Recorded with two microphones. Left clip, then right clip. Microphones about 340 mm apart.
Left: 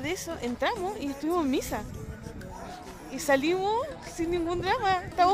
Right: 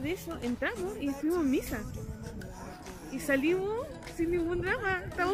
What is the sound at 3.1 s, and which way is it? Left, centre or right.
A woman's voice, centre.